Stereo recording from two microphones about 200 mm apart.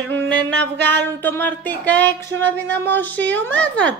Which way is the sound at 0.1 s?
10° left (ahead or behind).